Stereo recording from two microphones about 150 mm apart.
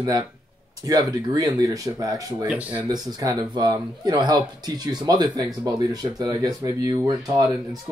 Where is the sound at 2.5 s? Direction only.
10° right (ahead or behind).